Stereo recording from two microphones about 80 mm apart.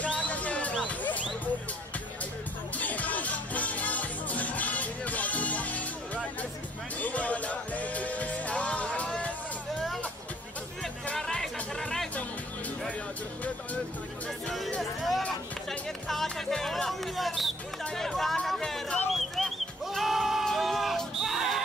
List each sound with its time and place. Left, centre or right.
0.0 s music: centre
2.8 s music: centre
11.1 s music: centre
14.8 s music: centre
19.1 s sheep: centre
20.4 s a sound: centre